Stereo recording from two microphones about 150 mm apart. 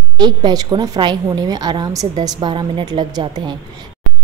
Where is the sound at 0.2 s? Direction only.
30° right (ahead or behind).